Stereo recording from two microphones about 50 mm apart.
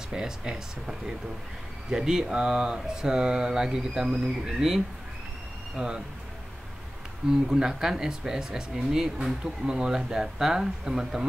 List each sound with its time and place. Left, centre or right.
0.1 s speech: centre
7.3 s speech: centre